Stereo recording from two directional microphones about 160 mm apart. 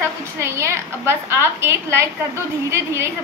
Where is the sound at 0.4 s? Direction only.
15° right (ahead or behind).